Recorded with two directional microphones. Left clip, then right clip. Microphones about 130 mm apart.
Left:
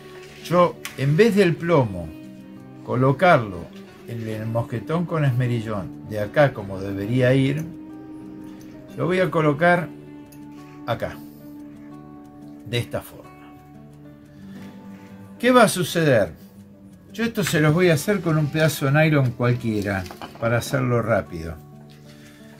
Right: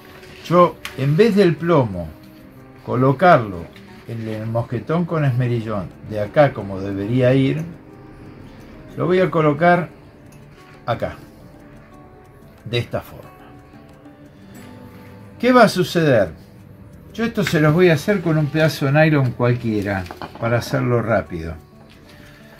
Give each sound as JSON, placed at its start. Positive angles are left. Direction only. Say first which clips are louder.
{"t": 0.5, "sound": "speech", "louder": "right 4 dB", "side_deg": 5}
{"t": 1.1, "sound": "speech", "louder": "right 2 dB", "side_deg": 15}
{"t": 2.9, "sound": "speech", "louder": "right 3 dB", "side_deg": 10}
{"t": 4.6, "sound": "speech", "louder": "right 4 dB", "side_deg": 5}
{"t": 8.9, "sound": "speech", "louder": "right 4 dB", "side_deg": 5}
{"t": 10.9, "sound": "speech", "louder": "right 4 dB", "side_deg": 5}
{"t": 12.6, "sound": "speech", "louder": "right 4 dB", "side_deg": 5}
{"t": 15.4, "sound": "speech", "louder": "right 3 dB", "side_deg": 0}
{"t": 17.7, "sound": "speech", "louder": "right 4 dB", "side_deg": 20}